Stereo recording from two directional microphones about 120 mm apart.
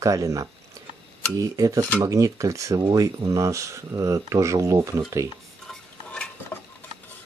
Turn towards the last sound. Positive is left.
turn(degrees=10)  # may be behind; listen again after turning